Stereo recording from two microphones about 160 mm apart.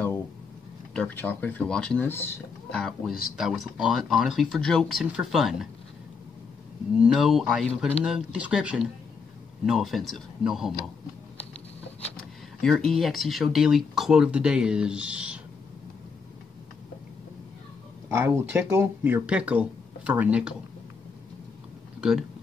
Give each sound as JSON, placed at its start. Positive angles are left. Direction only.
{"t": 0.9, "sound": "speech", "side_deg": 10}
{"t": 2.8, "sound": "speech", "side_deg": 0}
{"t": 6.9, "sound": "speech", "side_deg": -5}
{"t": 12.6, "sound": "speech", "side_deg": 0}
{"t": 18.0, "sound": "speech", "side_deg": -15}